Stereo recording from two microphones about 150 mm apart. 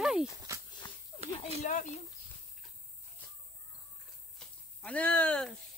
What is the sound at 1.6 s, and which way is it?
Speech, 50° left (ahead or behind).